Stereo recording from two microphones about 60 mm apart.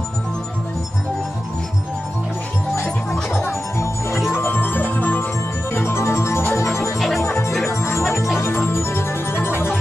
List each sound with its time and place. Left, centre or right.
3.4 s music: left
4.4 s music: left
5.8 s organ: left
7.2 s music: left